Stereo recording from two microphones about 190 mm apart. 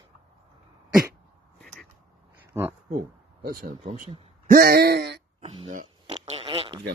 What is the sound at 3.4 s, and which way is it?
Speech, 50° right (ahead or behind).